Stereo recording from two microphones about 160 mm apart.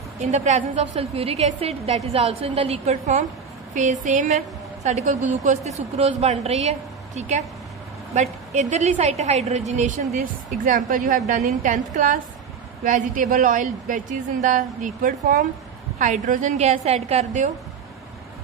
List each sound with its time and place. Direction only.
0.2 s a woman's voice: 45° right (ahead or behind)
16.0 s a woman's voice: 50° right (ahead or behind)